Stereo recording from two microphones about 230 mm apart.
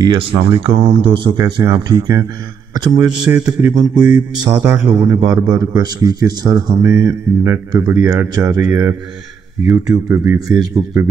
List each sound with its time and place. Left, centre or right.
0.0 s a man's voice: right